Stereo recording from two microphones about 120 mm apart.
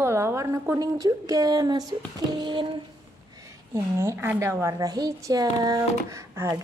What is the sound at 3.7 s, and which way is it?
A woman's voice, 25° right (ahead or behind).